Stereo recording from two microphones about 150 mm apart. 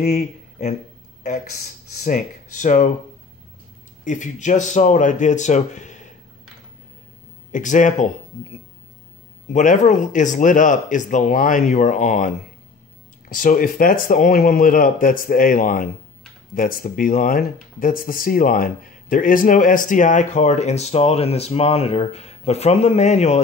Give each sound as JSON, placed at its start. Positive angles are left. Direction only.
{"t": 0.0, "sound": "speech", "side_deg": 50}
{"t": 2.0, "sound": "speech", "side_deg": 55}
{"t": 4.0, "sound": "speech", "side_deg": 55}
{"t": 7.5, "sound": "speech", "side_deg": 60}